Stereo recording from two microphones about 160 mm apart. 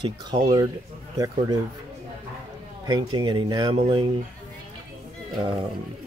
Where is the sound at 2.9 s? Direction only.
25° right (ahead or behind).